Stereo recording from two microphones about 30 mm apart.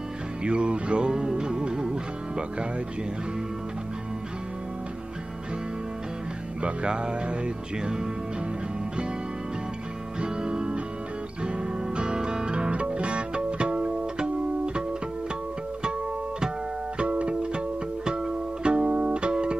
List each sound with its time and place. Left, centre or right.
0.4 s music: right
6.6 s speech: right
10.2 s music: right
17.0 s music: right